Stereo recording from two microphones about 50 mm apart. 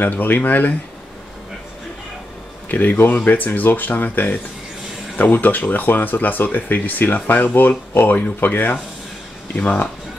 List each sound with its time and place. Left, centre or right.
0.0 s speech: left
2.7 s speech: left